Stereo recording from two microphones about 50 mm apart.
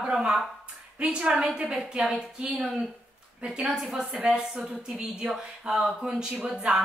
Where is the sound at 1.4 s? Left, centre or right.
Centre.